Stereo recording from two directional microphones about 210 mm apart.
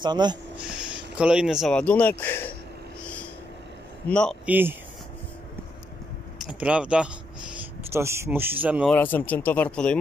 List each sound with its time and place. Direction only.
0.0 s speech: 20° right (ahead or behind)
1.1 s speech: 5° right (ahead or behind)
4.1 s speech: 5° left (ahead or behind)
4.5 s speech: 10° right (ahead or behind)
6.4 s speech: 5° right (ahead or behind)
8.9 s speech: 10° left (ahead or behind)